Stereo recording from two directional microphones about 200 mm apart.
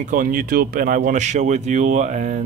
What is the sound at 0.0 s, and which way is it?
Speech, 40° right (ahead or behind).